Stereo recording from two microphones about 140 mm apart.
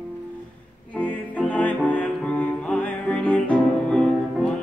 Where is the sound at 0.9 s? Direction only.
10° left (ahead or behind).